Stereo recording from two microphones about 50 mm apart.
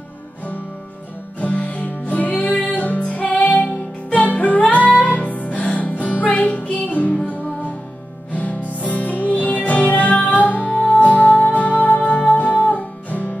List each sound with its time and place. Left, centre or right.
1.4 s music: left
8.3 s music: left